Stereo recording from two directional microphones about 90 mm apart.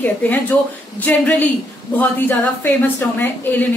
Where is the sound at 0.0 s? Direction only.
20° left (ahead or behind).